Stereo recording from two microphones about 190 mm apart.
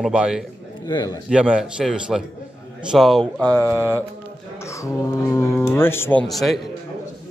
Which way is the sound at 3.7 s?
15° right (ahead or behind).